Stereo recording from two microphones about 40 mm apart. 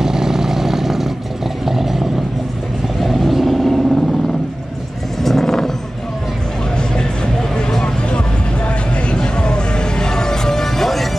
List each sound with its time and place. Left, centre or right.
0.0 s vehicle: centre
5.2 s vehicle: centre
8.6 s music: left; by 11.1 s centre